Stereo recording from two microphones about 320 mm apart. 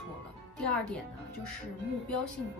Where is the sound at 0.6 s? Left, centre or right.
Centre.